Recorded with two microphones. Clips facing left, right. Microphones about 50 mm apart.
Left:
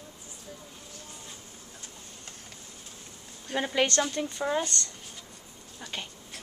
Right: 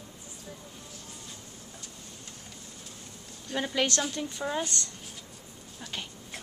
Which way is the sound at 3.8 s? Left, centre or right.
Centre.